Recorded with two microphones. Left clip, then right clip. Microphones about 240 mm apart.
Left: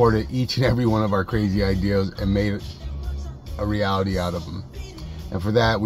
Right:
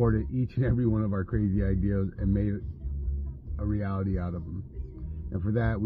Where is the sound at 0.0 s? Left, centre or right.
Left.